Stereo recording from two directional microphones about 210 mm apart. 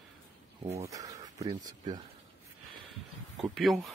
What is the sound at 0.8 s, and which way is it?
Speech, 15° right (ahead or behind).